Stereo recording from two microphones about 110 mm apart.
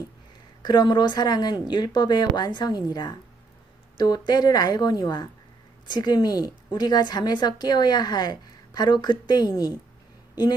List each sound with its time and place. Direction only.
0.6 s a woman's voice: 40° left (ahead or behind)